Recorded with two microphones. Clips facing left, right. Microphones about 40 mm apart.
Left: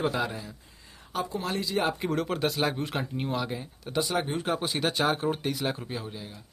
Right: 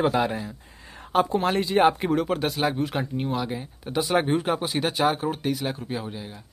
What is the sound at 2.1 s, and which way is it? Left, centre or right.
Speech, centre.